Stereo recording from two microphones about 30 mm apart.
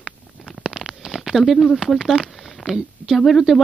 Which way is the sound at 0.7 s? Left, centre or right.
Centre.